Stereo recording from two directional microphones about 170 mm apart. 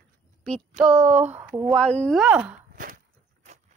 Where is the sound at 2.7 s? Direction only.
55° right (ahead or behind).